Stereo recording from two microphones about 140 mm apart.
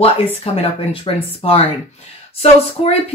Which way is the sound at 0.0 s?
45° left (ahead or behind).